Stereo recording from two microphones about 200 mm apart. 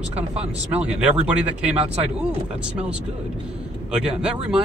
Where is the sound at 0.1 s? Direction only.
30° right (ahead or behind).